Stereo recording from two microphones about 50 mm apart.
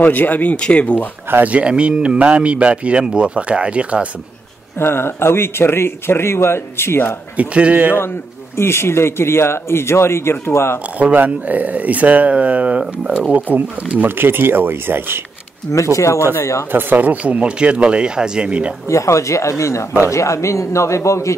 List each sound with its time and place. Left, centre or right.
0.0 s speech: left
0.6 s speech: left
1.4 s speech: right
4.7 s speech: left
7.3 s speech: right
8.5 s speech: left
11.0 s speech: right
14.0 s speech: right
15.7 s a man's voice: left
16.7 s speech: right
18.9 s a man's voice: left